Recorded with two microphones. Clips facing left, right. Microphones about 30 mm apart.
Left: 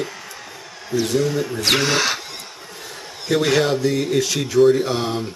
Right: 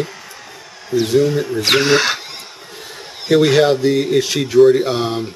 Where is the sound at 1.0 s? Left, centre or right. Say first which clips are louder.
Right 5 dB; centre.